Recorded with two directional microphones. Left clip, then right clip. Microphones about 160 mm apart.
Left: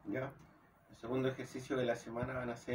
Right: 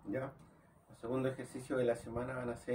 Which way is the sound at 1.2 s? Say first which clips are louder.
Even; 25° right (ahead or behind).